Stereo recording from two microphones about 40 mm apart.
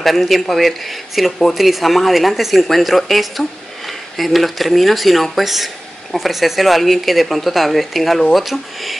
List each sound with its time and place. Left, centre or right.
0.0 s speech: centre